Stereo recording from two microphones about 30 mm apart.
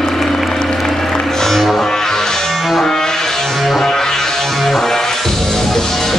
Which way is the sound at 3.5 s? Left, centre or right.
Centre.